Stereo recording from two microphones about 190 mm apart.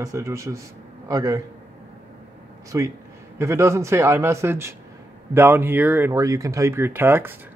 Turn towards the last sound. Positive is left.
turn(degrees=-10)  # may be behind; listen again after turning